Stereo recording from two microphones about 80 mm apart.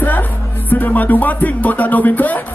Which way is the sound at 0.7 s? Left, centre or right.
Left.